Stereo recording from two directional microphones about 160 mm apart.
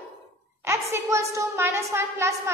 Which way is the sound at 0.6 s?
15° right (ahead or behind).